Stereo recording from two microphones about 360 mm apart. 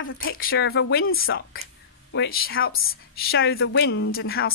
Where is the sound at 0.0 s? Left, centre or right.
Left.